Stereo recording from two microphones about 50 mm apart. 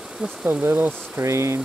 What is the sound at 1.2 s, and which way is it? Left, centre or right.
Speech, right.